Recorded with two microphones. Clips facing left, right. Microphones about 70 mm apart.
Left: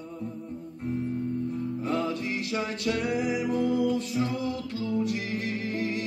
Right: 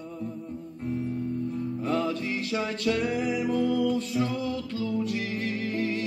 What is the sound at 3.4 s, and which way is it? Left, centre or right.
Music, left.